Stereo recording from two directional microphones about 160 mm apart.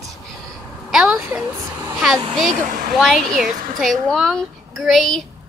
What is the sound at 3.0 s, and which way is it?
Speech, centre (ahead or behind).